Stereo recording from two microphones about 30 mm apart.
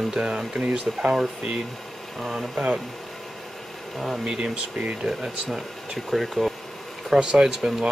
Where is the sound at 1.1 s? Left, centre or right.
Right.